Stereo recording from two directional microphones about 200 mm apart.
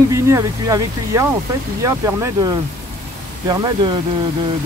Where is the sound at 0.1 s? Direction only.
15° right (ahead or behind).